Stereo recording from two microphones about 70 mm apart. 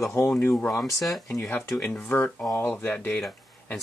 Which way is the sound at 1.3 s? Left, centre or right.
Left.